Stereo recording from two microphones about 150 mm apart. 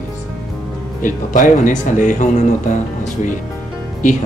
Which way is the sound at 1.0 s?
60° left (ahead or behind).